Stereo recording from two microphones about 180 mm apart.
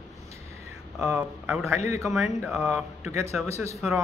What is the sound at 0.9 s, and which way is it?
Speech, 15° right (ahead or behind).